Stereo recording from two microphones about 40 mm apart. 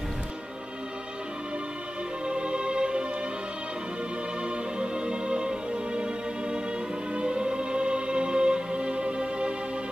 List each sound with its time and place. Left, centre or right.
2.2 s music: right
4.5 s music: right